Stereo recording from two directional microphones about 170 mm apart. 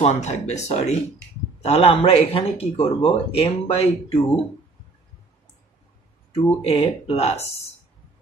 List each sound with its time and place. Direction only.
0.0 s a man's voice: 40° left (ahead or behind)
6.3 s a man's voice: 35° left (ahead or behind)